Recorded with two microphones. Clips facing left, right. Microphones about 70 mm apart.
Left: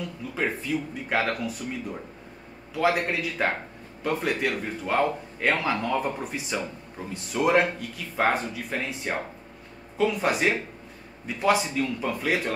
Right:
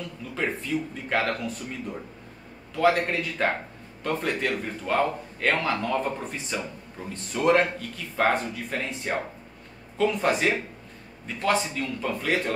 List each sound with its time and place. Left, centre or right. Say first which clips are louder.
0.3 s a man's voice: even; centre